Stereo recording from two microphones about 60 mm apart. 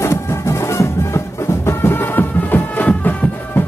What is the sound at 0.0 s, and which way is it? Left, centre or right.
Music, left.